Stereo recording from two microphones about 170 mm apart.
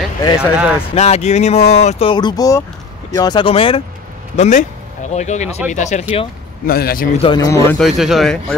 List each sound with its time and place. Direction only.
0.4 s speech: 5° right (ahead or behind)
0.9 s speech: 40° left (ahead or behind)
4.4 s speech: 45° left (ahead or behind)
6.6 s a man's voice: 60° left (ahead or behind)
7.2 s speech: 25° left (ahead or behind)
7.7 s speech: centre (ahead or behind)